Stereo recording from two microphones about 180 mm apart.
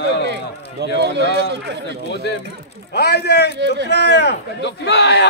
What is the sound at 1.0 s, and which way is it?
Speech, 70° right (ahead or behind).